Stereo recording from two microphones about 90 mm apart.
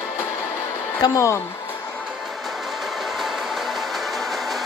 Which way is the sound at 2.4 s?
Centre (ahead or behind).